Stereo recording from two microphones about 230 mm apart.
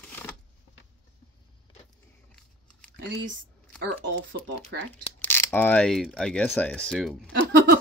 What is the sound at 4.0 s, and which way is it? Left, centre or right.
Speech, right.